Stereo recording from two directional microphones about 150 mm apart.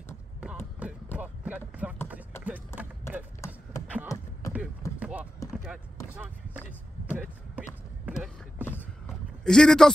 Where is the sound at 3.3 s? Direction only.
20° left (ahead or behind).